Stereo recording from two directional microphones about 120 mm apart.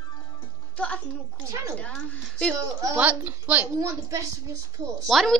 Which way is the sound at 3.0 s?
15° right (ahead or behind).